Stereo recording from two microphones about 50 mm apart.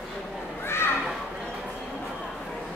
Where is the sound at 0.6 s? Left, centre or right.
Left.